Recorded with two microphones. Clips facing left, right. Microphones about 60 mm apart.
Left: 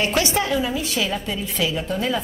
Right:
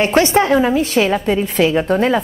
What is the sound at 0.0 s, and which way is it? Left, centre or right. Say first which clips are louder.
A woman's voice: right 8 dB; right.